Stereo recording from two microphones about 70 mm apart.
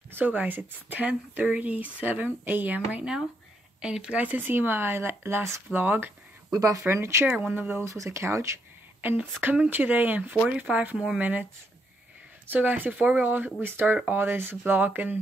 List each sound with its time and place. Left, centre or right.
0.1 s speech: right
4.2 s speech: right
6.5 s speech: right
6.8 s speech: right
7.3 s speech: right
7.8 s speech: right
9.0 s speech: right
12.4 s speech: right